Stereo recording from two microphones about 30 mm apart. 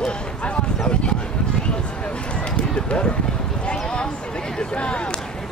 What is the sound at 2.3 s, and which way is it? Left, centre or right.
Run, left.